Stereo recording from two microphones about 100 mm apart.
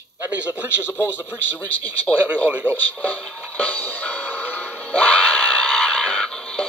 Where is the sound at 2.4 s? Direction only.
10° right (ahead or behind).